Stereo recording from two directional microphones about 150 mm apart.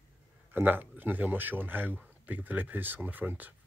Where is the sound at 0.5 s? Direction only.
15° right (ahead or behind).